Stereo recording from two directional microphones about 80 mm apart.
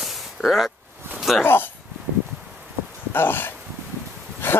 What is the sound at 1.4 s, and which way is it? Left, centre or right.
Speech, left.